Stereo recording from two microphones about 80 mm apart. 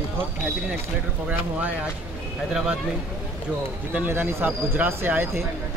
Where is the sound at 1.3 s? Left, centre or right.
Centre.